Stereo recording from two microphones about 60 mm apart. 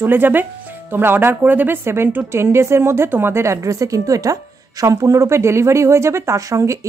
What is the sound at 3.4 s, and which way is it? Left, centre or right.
Speech, right.